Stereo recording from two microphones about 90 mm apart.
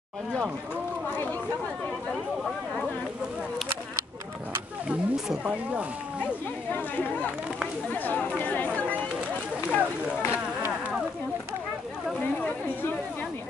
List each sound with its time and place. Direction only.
4.8 s speech: 5° right (ahead or behind)
7.9 s speech: 20° left (ahead or behind)
9.7 s speech: 20° left (ahead or behind)
10.3 s a sound: 15° right (ahead or behind)
12.4 s speech: 20° left (ahead or behind)